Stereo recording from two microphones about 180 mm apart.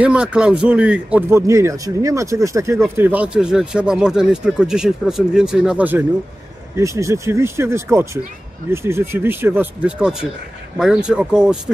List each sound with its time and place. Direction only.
0.0 s a man's voice: 5° right (ahead or behind)